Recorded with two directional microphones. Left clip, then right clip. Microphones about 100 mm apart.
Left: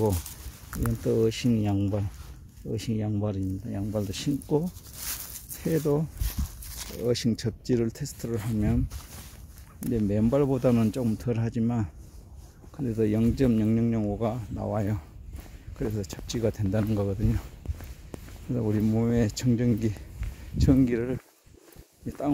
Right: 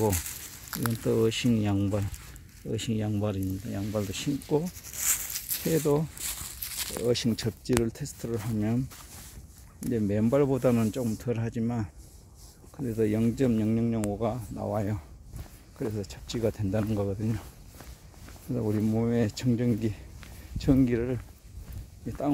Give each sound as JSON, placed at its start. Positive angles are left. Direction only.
{"t": 0.7, "sound": "speech", "side_deg": -5}
{"t": 4.1, "sound": "speech", "side_deg": 5}
{"t": 5.5, "sound": "speech", "side_deg": -5}
{"t": 9.8, "sound": "speech", "side_deg": -10}
{"t": 11.1, "sound": "speech", "side_deg": 20}
{"t": 12.8, "sound": "speech", "side_deg": 0}
{"t": 18.5, "sound": "speech", "side_deg": 0}